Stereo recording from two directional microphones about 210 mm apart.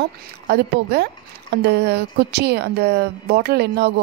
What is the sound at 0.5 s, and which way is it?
A woman's voice, 55° right (ahead or behind).